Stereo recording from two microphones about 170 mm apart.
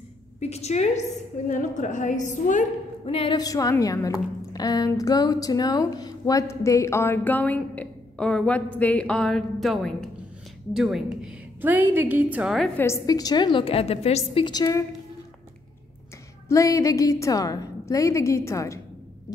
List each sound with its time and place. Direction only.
0.4 s a woman's voice: 40° left (ahead or behind)
3.1 s a woman's voice: 35° left (ahead or behind)
3.3 s a woman's voice: 20° left (ahead or behind); by 12.8 s centre (ahead or behind)
12.8 s a woman's voice: 20° left (ahead or behind)
16.4 s a woman's voice: 20° left (ahead or behind)